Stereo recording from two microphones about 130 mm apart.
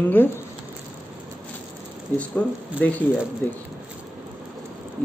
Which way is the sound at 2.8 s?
15° left (ahead or behind).